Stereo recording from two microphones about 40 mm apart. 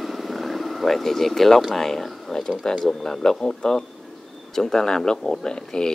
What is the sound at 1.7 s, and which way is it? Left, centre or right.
Speech, centre.